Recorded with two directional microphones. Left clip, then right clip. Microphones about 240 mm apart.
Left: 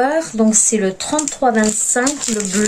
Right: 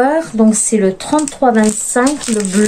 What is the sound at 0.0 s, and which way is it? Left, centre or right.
A woman's voice, centre.